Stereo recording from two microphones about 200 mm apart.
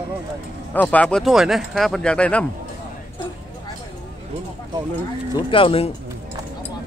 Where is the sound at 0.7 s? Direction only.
5° left (ahead or behind).